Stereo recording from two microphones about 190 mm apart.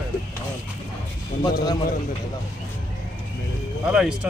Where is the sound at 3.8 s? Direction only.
5° right (ahead or behind).